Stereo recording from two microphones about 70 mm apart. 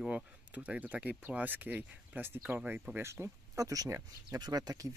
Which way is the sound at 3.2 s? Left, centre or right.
Right.